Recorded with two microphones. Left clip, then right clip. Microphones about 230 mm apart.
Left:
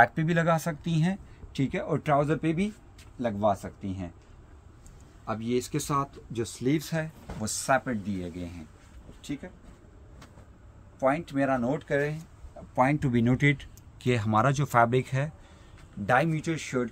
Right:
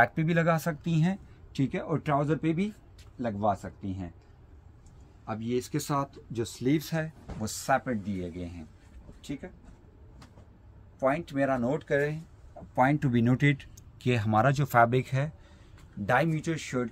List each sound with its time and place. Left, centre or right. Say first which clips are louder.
0.0 s speech: left 2 dB; centre
5.2 s speech: left 2 dB; left; by 9.5 s centre
11.0 s speech: left 1 dB; centre